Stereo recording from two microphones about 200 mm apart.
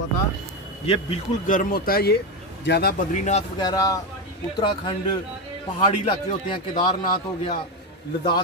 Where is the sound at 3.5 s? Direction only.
20° left (ahead or behind).